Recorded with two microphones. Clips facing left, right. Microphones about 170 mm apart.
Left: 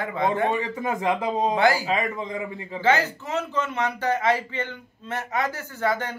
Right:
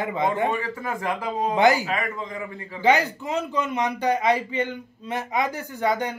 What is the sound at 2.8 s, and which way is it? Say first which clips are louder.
A man's voice: right 2 dB; 15° right (ahead or behind).